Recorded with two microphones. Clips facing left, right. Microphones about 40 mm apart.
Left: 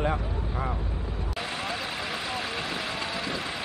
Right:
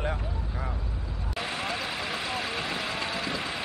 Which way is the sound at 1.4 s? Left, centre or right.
Centre.